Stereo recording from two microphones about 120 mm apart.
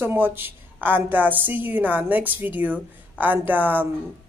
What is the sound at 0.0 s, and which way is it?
A woman's voice, 15° right (ahead or behind).